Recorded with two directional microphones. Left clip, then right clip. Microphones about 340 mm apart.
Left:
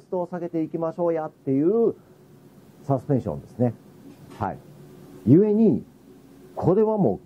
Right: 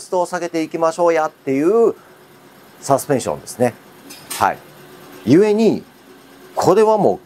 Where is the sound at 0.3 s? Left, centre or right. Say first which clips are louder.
Right 7 dB; centre.